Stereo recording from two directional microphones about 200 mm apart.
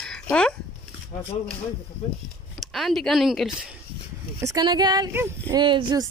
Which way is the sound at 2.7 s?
Centre (ahead or behind).